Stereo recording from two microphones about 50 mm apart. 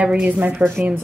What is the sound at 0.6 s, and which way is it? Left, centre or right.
Speech, right.